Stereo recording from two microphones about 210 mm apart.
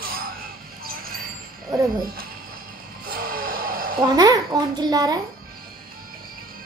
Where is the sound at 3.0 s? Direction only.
45° right (ahead or behind).